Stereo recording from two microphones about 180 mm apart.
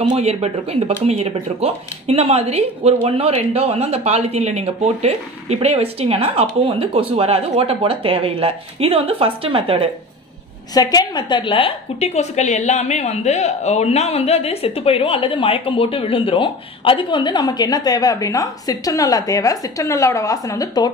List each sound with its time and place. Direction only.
0.1 s speech: 35° right (ahead or behind)
10.7 s a woman's voice: 20° left (ahead or behind)